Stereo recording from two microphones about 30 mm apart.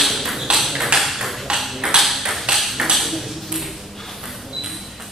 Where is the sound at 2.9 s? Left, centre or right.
Centre.